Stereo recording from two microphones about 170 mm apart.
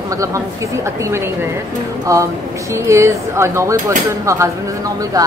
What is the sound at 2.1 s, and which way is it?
Speech, 20° right (ahead or behind).